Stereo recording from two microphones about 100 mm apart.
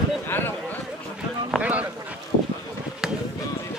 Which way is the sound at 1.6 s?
15° right (ahead or behind).